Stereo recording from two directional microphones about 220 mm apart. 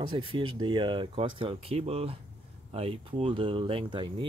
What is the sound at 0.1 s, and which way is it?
Speech, 25° right (ahead or behind).